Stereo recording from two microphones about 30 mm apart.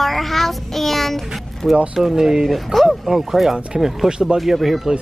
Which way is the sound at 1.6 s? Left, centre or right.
Centre.